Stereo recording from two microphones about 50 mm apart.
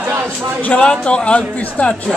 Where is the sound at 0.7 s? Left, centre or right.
Left.